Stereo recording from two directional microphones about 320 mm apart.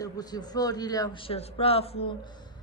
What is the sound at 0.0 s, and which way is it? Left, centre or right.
A man's voice, centre.